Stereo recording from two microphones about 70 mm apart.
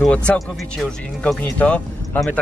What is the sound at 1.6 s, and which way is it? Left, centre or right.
Speech, centre.